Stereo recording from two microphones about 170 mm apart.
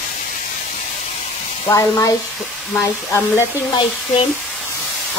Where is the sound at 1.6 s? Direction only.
20° left (ahead or behind).